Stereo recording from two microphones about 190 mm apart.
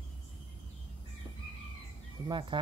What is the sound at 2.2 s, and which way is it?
Speech, 25° right (ahead or behind).